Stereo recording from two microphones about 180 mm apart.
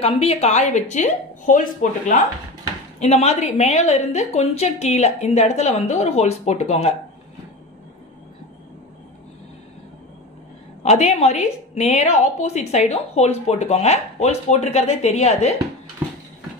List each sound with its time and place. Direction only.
0.0 s a woman's voice: 35° left (ahead or behind)
10.8 s a woman's voice: 40° left (ahead or behind)